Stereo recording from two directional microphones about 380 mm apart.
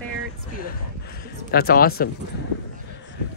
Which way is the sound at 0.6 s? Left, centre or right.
Left.